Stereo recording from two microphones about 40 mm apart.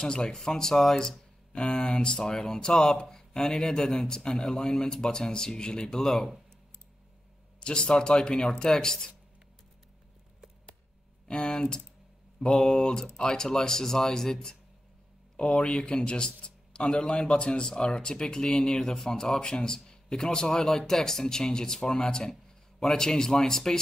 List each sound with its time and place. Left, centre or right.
0.0 s speech: centre
7.6 s speech: left
11.2 s speech: left